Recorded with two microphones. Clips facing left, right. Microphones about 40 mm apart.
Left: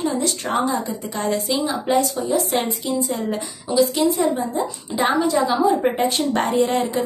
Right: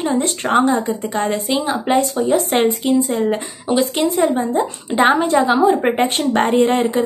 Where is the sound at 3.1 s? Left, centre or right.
Right.